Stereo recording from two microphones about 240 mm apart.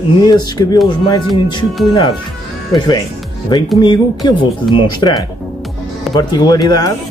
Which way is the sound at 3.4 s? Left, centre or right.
Centre.